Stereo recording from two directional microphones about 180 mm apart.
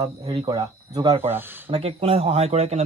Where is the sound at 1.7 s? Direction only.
30° right (ahead or behind).